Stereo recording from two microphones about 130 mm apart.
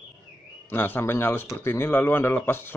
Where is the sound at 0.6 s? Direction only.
15° left (ahead or behind).